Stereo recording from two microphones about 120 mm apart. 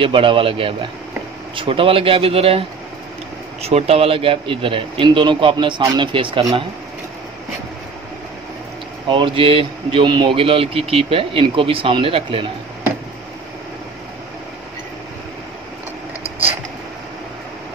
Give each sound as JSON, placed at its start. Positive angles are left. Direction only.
{"t": 0.0, "sound": "speech", "side_deg": -50}
{"t": 3.6, "sound": "speech", "side_deg": -60}
{"t": 9.1, "sound": "speech", "side_deg": -45}